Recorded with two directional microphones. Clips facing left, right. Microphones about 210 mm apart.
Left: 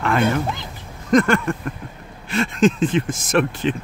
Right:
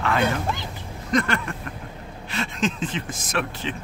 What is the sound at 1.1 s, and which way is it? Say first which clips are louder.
Speech: left 7 dB; 45° left (ahead or behind).